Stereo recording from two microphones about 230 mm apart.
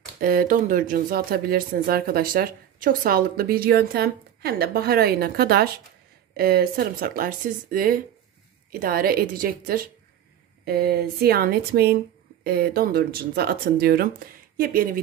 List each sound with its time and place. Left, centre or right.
0.2 s a woman's voice: right